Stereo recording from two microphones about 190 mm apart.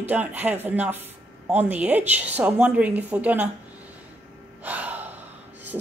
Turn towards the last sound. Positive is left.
turn(degrees=-10)  # may be behind; listen again after turning